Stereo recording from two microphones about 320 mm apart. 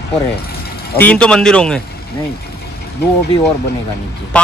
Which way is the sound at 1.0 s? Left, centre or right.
Centre.